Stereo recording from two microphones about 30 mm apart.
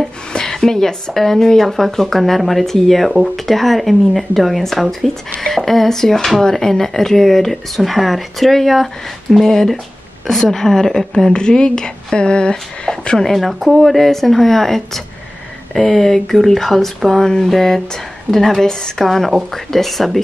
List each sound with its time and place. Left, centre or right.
0.0 s a sound: left
0.5 s speech: centre
11.3 s speech: left
12.9 s a sound: centre
13.2 s speech: centre
13.5 s speech: centre
13.7 s speech: centre
18.7 s speech: left
19.0 s speech: centre